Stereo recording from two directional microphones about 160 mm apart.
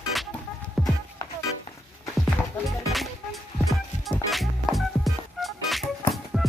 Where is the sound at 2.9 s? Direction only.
Centre (ahead or behind).